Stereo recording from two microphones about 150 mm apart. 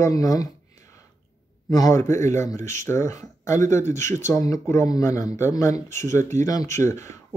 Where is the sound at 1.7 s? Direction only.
25° left (ahead or behind).